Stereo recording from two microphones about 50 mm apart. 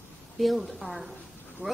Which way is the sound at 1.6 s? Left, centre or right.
Right.